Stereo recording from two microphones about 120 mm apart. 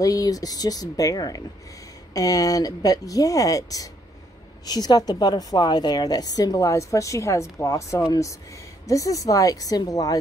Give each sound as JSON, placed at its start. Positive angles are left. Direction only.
{"t": 0.0, "sound": "a woman's voice", "side_deg": 30}